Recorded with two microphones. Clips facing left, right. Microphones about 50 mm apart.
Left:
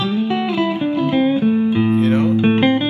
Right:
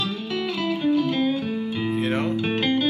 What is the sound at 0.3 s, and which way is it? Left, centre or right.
Music, left.